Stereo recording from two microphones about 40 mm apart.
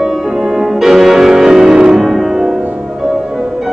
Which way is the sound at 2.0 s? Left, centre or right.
Centre.